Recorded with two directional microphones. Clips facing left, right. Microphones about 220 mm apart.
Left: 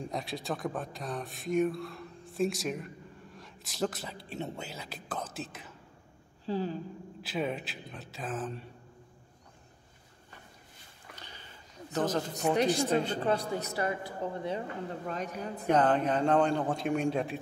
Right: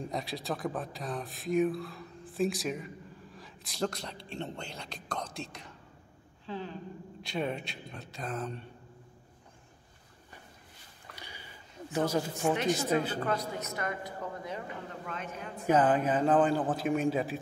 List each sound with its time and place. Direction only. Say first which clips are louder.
0.0 s speech: even; centre (ahead or behind)
6.4 s speech: left 6 dB; 35° left (ahead or behind)
7.2 s speech: left 1 dB; centre (ahead or behind)
11.1 s a sound: right 3 dB; 10° right (ahead or behind)
11.9 s a man's voice: right 1 dB; 10° right (ahead or behind)
12.5 s speech: left 3 dB; 35° left (ahead or behind)
12.8 s a man's voice: left 1 dB; 5° right (ahead or behind)
13.2 s speech: left 3 dB; 30° left (ahead or behind)
15.6 s speech: right 1 dB; 5° right (ahead or behind)